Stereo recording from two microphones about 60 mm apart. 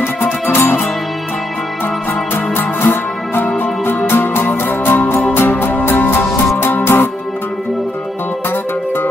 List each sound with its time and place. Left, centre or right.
0.0 s music: left
2.3 s music: left